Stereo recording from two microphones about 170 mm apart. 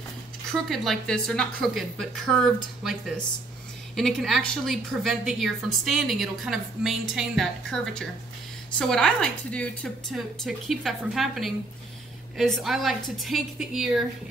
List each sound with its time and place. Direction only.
0.5 s a woman's voice: 5° left (ahead or behind)